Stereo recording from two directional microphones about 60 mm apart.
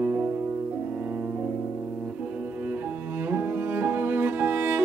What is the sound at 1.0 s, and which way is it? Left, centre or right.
Music, right.